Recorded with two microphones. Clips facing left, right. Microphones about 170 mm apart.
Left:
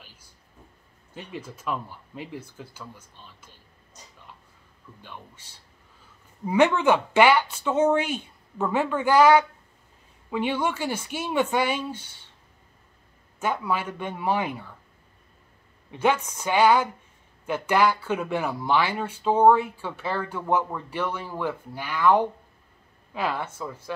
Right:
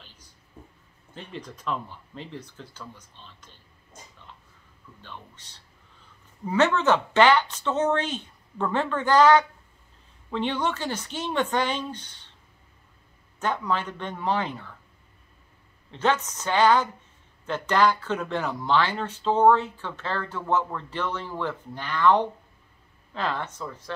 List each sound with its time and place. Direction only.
0.0 s a sound: 10° left (ahead or behind)
1.1 s speech: 10° left (ahead or behind)
3.9 s a sound: 50° right (ahead or behind)
5.0 s speech: 10° left (ahead or behind)
13.4 s speech: 10° left (ahead or behind)
15.9 s speech: 10° left (ahead or behind)